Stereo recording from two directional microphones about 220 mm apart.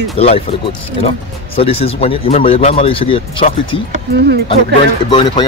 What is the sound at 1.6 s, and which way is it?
Speech, 25° left (ahead or behind).